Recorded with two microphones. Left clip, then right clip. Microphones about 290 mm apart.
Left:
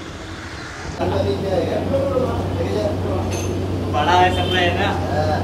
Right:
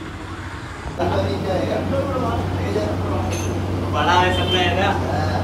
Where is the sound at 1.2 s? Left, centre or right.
Centre.